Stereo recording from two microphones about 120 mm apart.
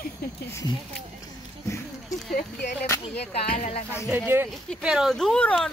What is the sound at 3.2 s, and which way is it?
Speech, 60° left (ahead or behind).